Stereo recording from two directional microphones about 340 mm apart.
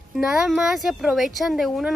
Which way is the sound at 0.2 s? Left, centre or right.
Centre.